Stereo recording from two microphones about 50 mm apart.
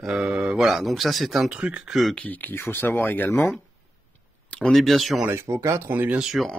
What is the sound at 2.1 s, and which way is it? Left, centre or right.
Speech, left.